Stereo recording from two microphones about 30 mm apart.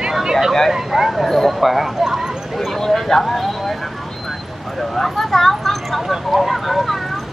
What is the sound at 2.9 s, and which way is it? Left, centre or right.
Speech, centre.